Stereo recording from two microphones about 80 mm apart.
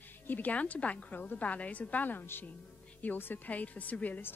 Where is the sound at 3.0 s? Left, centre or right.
Left.